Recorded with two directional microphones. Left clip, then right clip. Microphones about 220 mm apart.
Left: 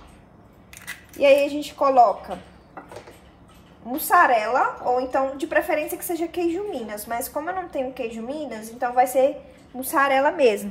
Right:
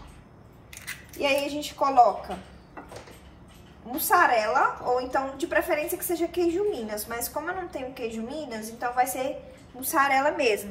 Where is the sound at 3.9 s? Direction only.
45° left (ahead or behind).